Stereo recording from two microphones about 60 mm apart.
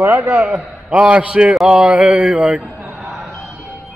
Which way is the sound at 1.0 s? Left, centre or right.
Centre.